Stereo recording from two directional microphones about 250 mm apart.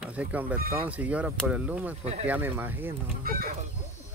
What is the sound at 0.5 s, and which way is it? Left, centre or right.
Speech, right.